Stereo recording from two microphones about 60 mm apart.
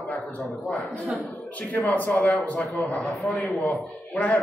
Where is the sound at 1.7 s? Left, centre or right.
Left.